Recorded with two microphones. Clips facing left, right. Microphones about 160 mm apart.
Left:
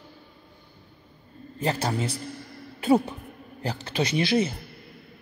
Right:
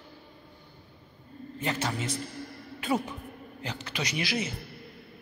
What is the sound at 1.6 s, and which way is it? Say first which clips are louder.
A man's voice: left 5 dB; 35° left (ahead or behind).